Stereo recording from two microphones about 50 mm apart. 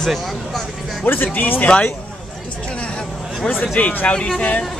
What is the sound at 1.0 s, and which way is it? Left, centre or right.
Speech, left.